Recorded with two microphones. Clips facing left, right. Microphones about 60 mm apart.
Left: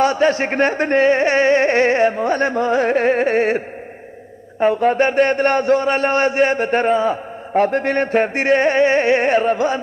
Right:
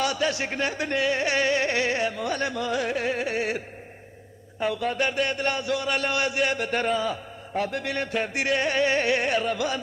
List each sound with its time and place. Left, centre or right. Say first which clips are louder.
0.0 s a man's voice: left 10 dB; left